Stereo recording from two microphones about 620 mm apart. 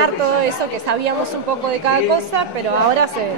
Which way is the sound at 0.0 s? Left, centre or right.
Right.